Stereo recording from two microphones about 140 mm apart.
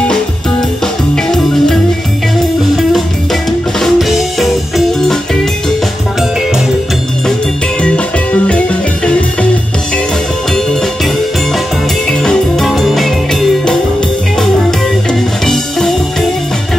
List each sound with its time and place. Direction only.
1.1 s music: 5° left (ahead or behind)
7.8 s music: 10° left (ahead or behind)
12.1 s music: 5° left (ahead or behind)
15.0 s music: 5° left (ahead or behind)